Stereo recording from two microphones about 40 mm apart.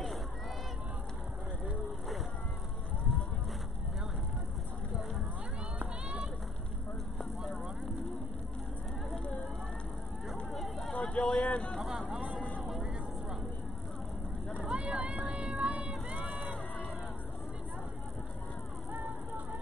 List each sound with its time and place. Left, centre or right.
6.0 s run: right
11.0 s vehicle: left
14.7 s vehicle: right
16.2 s crowd: right
18.9 s vehicle: right